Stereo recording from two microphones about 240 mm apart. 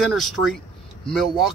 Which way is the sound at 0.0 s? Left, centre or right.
Centre.